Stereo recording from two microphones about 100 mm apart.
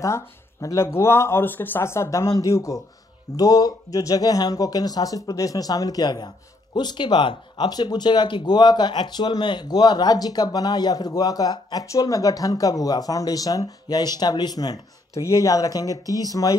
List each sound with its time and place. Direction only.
0.0 s speech: 30° left (ahead or behind)